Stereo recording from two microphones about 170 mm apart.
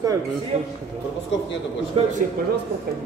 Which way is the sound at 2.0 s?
30° right (ahead or behind).